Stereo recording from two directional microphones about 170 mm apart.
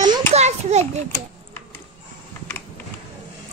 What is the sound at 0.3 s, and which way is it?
Children playing, 40° right (ahead or behind).